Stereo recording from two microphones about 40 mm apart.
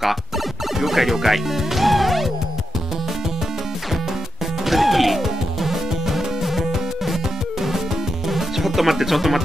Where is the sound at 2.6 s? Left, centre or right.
Centre.